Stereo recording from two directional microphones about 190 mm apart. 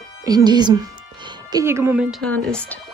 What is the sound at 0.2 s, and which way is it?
Speech, 20° right (ahead or behind).